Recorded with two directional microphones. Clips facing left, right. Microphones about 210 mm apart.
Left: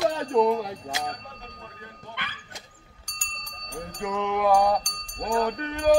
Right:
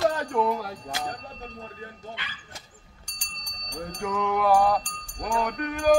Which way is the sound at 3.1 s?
10° right (ahead or behind).